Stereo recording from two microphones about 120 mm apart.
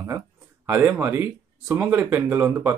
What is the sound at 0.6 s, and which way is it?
Speech, 20° right (ahead or behind).